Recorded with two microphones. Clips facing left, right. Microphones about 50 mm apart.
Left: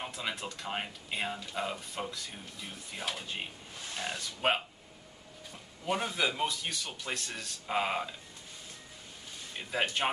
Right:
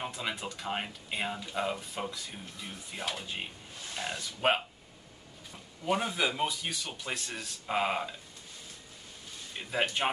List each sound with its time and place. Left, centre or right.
0.0 s speech: centre
5.9 s speech: centre
9.6 s speech: centre